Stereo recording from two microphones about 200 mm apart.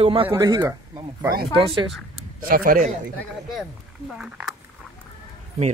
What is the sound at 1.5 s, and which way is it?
Speech, 25° right (ahead or behind).